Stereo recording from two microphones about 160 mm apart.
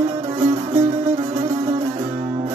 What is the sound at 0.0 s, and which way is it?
Music, 40° right (ahead or behind).